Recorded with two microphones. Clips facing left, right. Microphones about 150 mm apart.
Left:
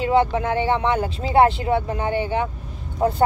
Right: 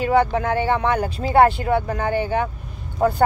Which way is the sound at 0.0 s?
20° left (ahead or behind).